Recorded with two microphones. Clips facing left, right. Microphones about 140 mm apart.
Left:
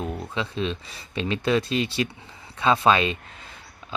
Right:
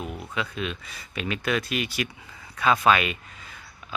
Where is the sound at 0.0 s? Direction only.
30° left (ahead or behind).